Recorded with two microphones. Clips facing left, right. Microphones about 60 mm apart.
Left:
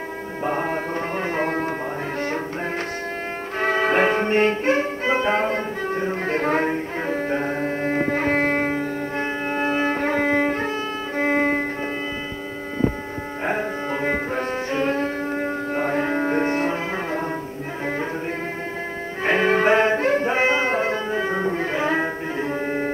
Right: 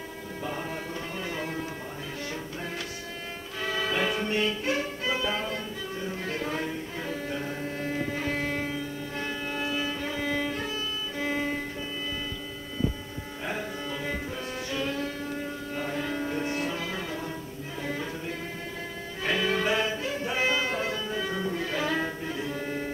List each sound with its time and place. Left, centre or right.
0.5 s music: left
3.5 s music: left
12.8 s hum: left
13.5 s music: left
19.2 s music: left